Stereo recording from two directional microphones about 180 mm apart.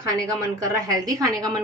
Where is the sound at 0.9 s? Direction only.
20° right (ahead or behind).